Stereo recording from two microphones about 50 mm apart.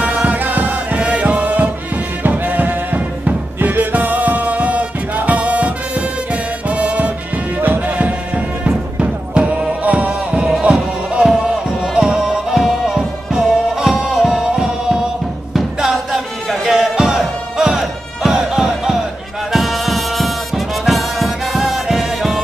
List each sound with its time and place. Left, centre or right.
0.0 s music: right
10.3 s music: centre
10.6 s music: right
19.5 s music: centre